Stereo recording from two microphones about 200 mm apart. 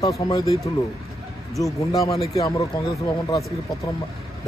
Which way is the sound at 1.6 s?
15° left (ahead or behind).